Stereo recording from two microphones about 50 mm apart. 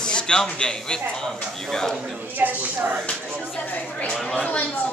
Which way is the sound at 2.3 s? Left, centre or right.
Right.